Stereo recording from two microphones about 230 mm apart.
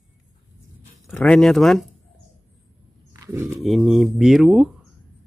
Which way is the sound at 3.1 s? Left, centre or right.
Centre.